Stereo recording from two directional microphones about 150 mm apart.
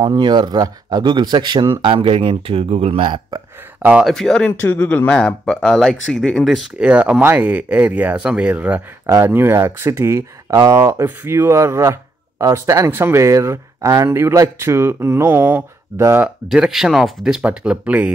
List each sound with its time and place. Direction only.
0.0 s speech: 30° right (ahead or behind)
3.8 s speech: 5° right (ahead or behind)
16.3 s speech: 5° right (ahead or behind)